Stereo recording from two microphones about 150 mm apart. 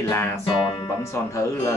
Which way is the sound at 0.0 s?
15° left (ahead or behind).